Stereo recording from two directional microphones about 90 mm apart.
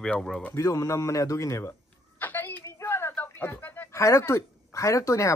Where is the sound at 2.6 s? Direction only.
30° left (ahead or behind).